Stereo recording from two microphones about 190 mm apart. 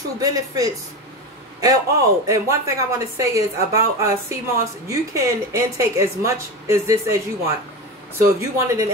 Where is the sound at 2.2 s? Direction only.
15° right (ahead or behind).